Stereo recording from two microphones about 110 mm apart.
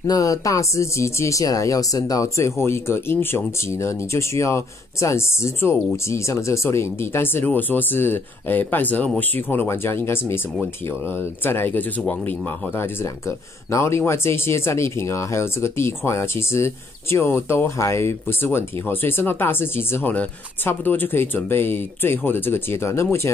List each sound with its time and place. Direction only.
0.0 s speech: 35° left (ahead or behind)